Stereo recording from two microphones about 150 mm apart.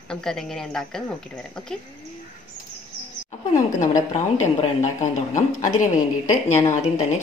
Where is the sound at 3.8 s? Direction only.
50° left (ahead or behind).